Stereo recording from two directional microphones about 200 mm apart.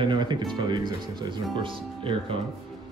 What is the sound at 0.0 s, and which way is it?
Speech, 20° right (ahead or behind).